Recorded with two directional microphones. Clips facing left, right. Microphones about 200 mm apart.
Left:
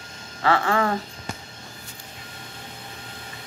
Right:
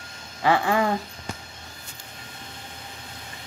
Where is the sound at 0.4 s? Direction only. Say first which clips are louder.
Even; 15° right (ahead or behind).